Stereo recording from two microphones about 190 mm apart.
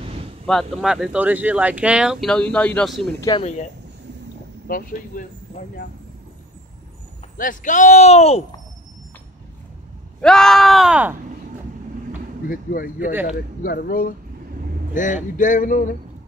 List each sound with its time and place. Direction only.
0.0 s a sound: 30° right (ahead or behind)
0.5 s speech: centre (ahead or behind)
3.2 s speech: 25° left (ahead or behind)
4.6 s speech: 45° left (ahead or behind)
7.3 s speech: 45° left (ahead or behind)
10.2 s speech: 5° left (ahead or behind)
12.4 s speech: 50° left (ahead or behind)
13.1 s speech: 10° right (ahead or behind)
13.6 s speech: 50° left (ahead or behind)